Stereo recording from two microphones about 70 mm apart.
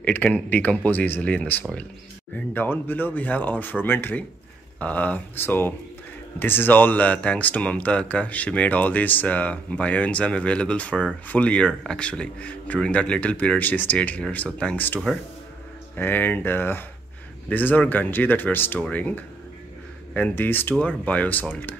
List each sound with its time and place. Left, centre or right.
0.0 s speech: left
2.3 s speech: left
16.0 s speech: left
20.8 s speech: centre